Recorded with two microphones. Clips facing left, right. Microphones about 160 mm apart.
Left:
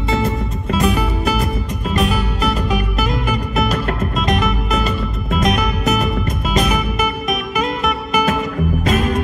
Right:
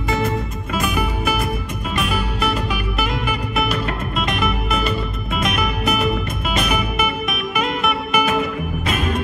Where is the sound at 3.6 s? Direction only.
40° left (ahead or behind).